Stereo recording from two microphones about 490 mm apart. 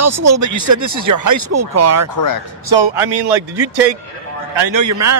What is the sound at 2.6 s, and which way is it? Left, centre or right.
Speech, right.